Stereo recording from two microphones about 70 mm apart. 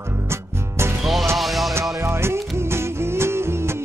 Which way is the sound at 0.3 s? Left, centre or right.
Right.